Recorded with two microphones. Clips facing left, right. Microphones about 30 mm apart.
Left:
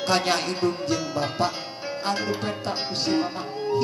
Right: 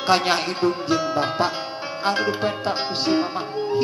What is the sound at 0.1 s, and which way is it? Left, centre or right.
Speech, right.